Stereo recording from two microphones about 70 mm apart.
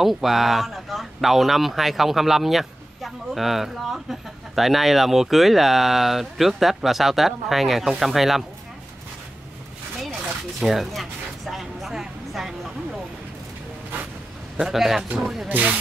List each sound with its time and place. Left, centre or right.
0.0 s speech: centre
10.6 s a sound: centre
14.6 s speech: centre
15.4 s speech: right